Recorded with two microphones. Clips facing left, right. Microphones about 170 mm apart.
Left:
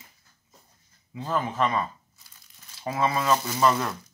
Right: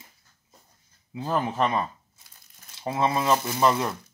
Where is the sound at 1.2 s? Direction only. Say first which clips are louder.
Right 1 dB; 30° right (ahead or behind).